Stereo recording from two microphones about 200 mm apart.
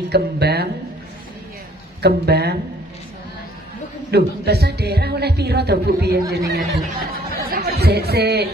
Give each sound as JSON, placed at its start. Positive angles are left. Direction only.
{"t": 0.1, "sound": "speech", "side_deg": -55}
{"t": 2.0, "sound": "speech", "side_deg": -55}
{"t": 4.1, "sound": "speech", "side_deg": -55}